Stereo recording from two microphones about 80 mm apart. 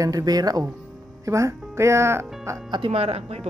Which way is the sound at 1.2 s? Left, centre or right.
Right.